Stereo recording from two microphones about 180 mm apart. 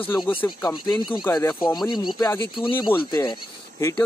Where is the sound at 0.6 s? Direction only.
25° left (ahead or behind).